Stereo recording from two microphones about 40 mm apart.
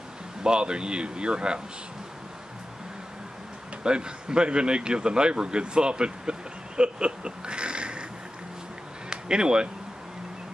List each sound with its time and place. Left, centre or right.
0.4 s a man's voice: right
3.8 s a man's voice: right
9.1 s speech: right